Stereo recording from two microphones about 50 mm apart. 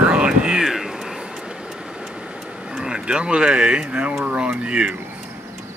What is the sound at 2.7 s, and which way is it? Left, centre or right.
Speech, centre.